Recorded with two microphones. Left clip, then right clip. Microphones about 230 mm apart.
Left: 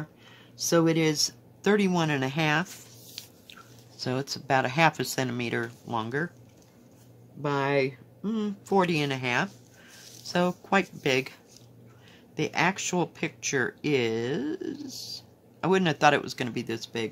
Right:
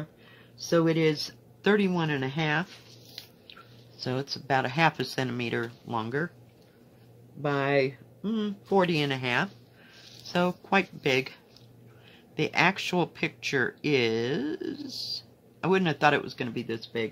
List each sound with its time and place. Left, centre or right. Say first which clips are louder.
0.7 s speech: left 1 dB; centre
1.9 s speech: left 2 dB; centre
4.0 s speech: left 1 dB; centre
7.4 s speech: even; centre
12.4 s speech: right 2 dB; centre